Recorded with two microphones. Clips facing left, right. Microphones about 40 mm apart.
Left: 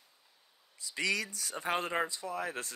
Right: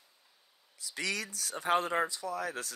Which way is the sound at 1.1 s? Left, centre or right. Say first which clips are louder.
Left 2 dB; right.